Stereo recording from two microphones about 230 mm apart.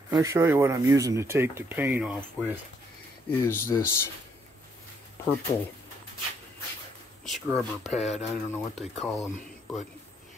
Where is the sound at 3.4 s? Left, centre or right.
Centre.